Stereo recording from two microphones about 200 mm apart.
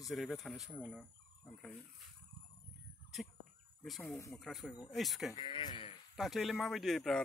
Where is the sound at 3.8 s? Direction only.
Centre (ahead or behind).